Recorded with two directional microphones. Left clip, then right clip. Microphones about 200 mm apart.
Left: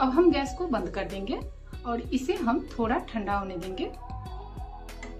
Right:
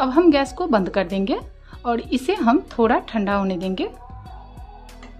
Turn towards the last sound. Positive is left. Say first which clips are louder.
# right 8 dB
turn(degrees=-60)  # may be behind; listen again after turning